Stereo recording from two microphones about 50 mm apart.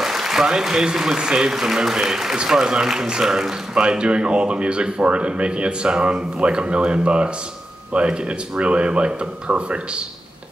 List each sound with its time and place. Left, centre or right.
0.0 s a man's voice: centre; by 10.0 s right